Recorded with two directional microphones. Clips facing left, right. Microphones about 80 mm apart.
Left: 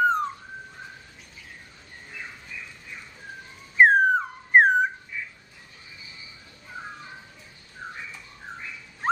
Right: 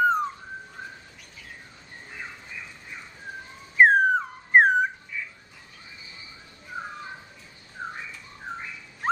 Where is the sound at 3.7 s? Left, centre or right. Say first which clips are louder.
Even; centre.